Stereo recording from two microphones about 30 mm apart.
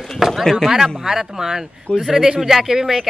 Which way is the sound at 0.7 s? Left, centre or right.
Centre.